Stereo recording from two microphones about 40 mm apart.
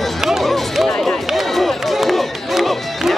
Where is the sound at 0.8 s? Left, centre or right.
Centre.